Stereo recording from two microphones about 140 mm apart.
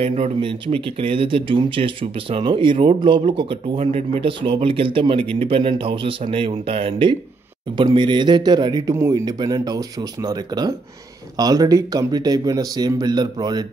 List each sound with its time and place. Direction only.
0.0 s speech: 45° right (ahead or behind); by 13.7 s 30° right (ahead or behind)